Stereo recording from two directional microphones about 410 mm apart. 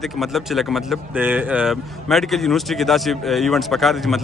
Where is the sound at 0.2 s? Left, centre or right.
Centre.